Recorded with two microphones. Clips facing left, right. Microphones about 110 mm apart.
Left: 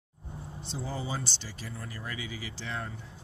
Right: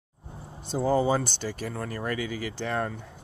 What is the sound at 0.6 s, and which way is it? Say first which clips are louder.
Speech: right 13 dB; 50° right (ahead or behind).